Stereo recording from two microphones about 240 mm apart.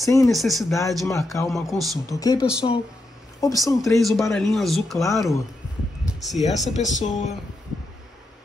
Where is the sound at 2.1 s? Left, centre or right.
Centre.